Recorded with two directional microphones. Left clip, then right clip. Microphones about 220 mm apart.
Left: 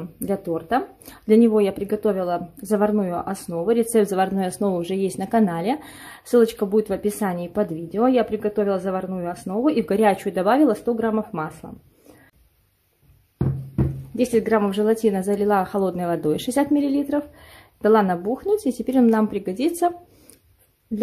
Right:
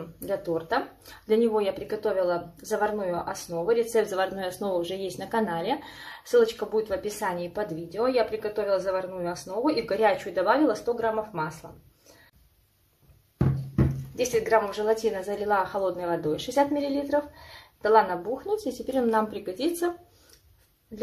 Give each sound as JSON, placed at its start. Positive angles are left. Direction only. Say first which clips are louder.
{"t": 0.2, "sound": "speech", "louder": "left 3 dB", "side_deg": 50}
{"t": 14.1, "sound": "speech", "louder": "left 3 dB", "side_deg": 45}